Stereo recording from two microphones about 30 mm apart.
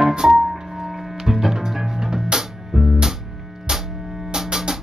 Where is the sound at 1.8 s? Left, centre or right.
Right.